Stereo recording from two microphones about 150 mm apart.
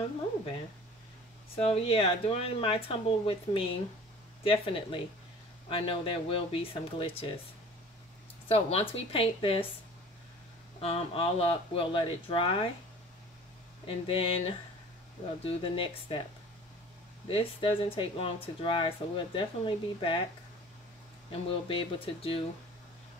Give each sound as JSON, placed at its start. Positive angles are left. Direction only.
{"t": 1.6, "sound": "speech", "side_deg": 40}
{"t": 8.5, "sound": "speech", "side_deg": 40}
{"t": 10.8, "sound": "speech", "side_deg": 40}
{"t": 13.8, "sound": "speech", "side_deg": 40}
{"t": 15.4, "sound": "speech", "side_deg": 35}
{"t": 17.3, "sound": "speech", "side_deg": 35}
{"t": 21.3, "sound": "speech", "side_deg": 35}